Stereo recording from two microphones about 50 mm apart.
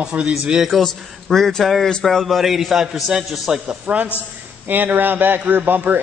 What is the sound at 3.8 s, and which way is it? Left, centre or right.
A man's voice, right.